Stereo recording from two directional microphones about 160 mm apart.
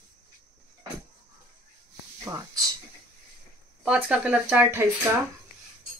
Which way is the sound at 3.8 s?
5° right (ahead or behind).